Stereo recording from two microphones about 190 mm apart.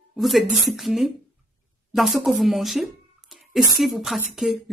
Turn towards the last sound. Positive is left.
turn(degrees=0)  # may be behind; listen again after turning